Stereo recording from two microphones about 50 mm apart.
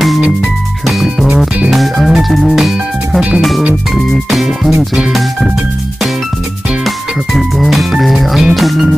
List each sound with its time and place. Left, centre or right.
1.0 s music: centre
1.7 s music: centre
7.3 s music: centre